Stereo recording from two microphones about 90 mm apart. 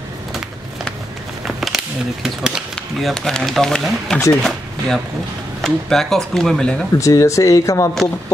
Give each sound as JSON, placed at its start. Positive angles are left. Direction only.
{"t": 1.6, "sound": "speech", "side_deg": -5}
{"t": 7.0, "sound": "speech", "side_deg": 35}